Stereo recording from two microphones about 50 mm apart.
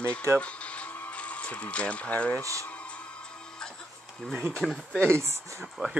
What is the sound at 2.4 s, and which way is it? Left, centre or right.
Speech, right.